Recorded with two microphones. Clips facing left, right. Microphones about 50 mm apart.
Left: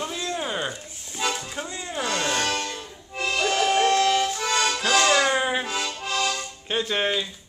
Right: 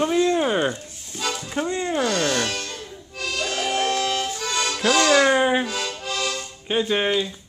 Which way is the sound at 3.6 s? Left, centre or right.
Centre.